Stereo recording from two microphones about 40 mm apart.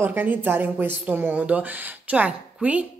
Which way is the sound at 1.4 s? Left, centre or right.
Right.